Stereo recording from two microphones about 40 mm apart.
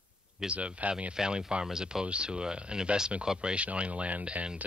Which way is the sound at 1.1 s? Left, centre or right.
Centre.